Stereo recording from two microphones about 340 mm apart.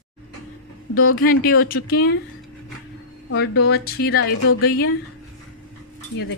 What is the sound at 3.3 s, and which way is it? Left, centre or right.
Speech, left.